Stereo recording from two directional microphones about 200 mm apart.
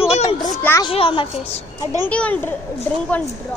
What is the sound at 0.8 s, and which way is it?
A woman's voice, 25° left (ahead or behind).